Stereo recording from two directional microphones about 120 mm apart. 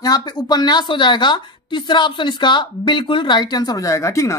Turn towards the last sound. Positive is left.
turn(degrees=25)  # may be behind; listen again after turning